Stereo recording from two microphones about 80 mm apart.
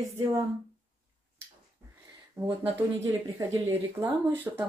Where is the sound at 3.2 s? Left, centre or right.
Right.